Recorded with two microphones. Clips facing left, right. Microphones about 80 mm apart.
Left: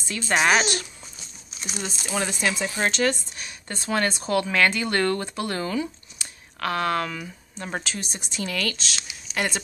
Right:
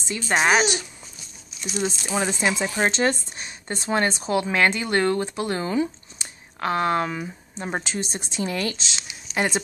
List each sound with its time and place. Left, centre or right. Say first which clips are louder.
0.1 s a woman's voice: right 1 dB; centre